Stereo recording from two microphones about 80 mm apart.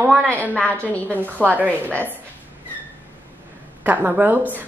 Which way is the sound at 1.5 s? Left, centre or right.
Right.